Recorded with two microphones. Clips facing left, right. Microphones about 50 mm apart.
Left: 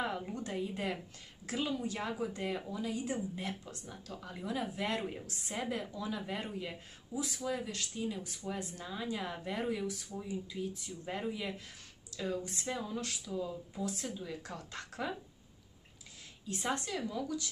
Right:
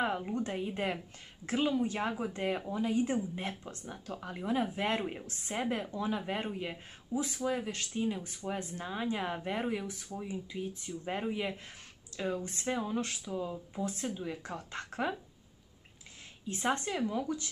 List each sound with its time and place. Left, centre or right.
0.0 s speech: right
16.4 s speech: right